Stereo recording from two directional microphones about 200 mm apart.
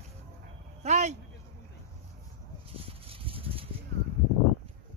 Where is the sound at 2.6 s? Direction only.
30° right (ahead or behind).